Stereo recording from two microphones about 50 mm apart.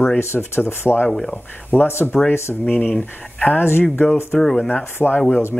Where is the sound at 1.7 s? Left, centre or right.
Right.